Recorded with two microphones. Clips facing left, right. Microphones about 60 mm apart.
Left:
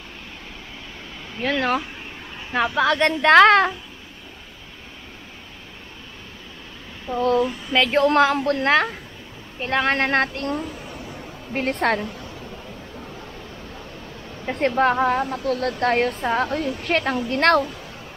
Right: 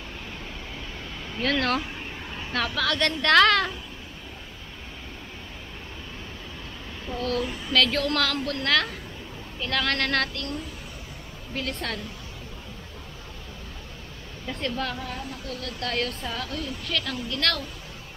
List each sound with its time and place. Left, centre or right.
1.3 s a woman's voice: centre; by 3.7 s left
7.2 s a woman's voice: left
11.5 s speech: left
14.4 s a woman's voice: left
15.0 s a woman's voice: left